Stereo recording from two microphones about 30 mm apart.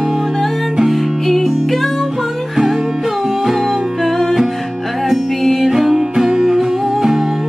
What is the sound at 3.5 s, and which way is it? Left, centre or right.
Music, centre.